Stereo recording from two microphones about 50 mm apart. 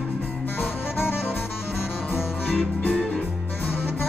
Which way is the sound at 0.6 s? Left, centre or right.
Left.